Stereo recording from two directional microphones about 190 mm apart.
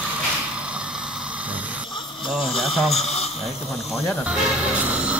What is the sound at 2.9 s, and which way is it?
Speech, 35° left (ahead or behind).